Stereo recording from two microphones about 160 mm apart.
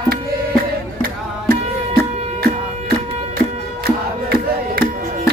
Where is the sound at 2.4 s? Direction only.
70° right (ahead or behind).